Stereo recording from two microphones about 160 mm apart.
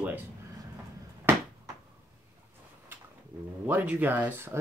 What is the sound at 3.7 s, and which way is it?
Speech, 10° right (ahead or behind).